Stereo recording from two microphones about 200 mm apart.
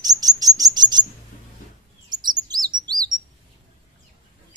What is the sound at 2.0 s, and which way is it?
Chirp, 20° right (ahead or behind).